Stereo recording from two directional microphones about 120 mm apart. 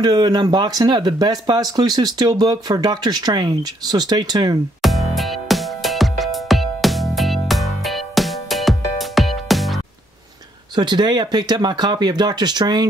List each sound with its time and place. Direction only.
0.0 s speech: 35° right (ahead or behind)
4.8 s music: centre (ahead or behind)
10.8 s speech: 40° right (ahead or behind)